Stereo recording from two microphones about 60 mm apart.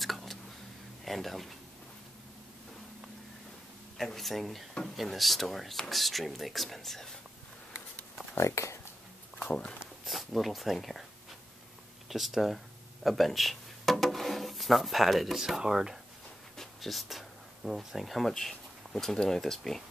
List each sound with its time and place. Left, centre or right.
0.0 s tick: centre
1.0 s speech: centre
4.0 s speech: centre
8.4 s speech: left
10.0 s speech: centre
12.1 s speech: centre